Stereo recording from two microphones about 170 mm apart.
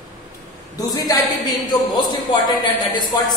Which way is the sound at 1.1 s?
20° left (ahead or behind).